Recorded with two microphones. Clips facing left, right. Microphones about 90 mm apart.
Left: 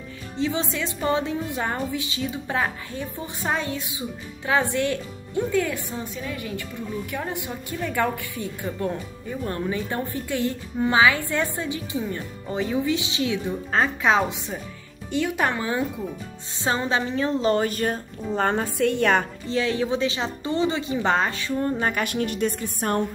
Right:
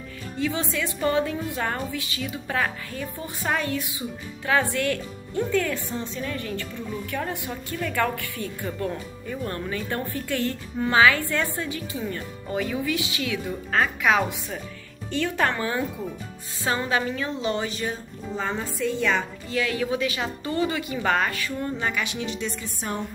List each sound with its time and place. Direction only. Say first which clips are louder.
0.4 s a woman's voice: left 1 dB; 20° left (ahead or behind); by 19.2 s 60° left (ahead or behind)
19.5 s a woman's voice: left 2 dB; 30° left (ahead or behind); by 23.0 s 55° left (ahead or behind)